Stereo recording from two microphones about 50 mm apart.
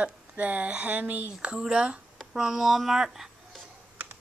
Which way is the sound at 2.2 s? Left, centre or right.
Centre.